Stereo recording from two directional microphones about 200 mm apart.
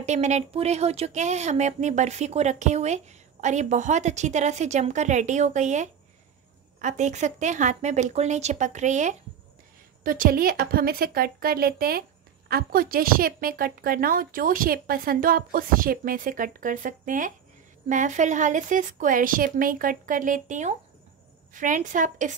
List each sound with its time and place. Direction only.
0.0 s a woman's voice: 35° right (ahead or behind)